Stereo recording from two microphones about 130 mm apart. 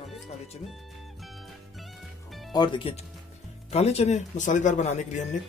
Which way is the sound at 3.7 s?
50° left (ahead or behind).